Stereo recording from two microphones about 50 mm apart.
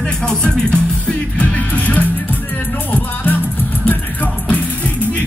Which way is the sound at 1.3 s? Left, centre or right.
Left.